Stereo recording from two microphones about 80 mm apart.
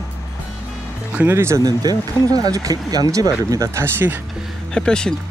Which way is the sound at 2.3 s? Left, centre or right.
Right.